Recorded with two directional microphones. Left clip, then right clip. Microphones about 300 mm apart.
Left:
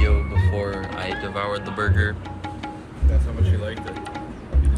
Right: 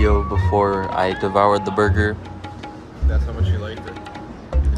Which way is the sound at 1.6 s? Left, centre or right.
Centre.